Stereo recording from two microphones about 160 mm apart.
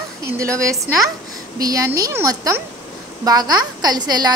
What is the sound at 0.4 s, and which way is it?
A woman's voice, 20° right (ahead or behind).